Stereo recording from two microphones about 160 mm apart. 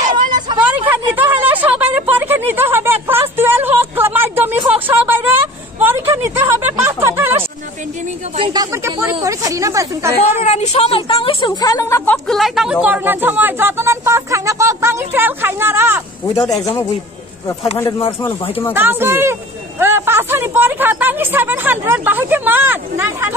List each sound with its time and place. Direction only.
0.6 s a sound: 10° right (ahead or behind)
4.8 s speech: 10° right (ahead or behind)
8.5 s speech: 20° right (ahead or behind)
10.4 s a woman's voice: 45° left (ahead or behind); by 12.2 s 15° left (ahead or behind)
12.3 s speech: centre (ahead or behind)
16.3 s a man's voice: 20° left (ahead or behind)
18.7 s speech: 15° right (ahead or behind)
19.8 s a sound: 15° right (ahead or behind)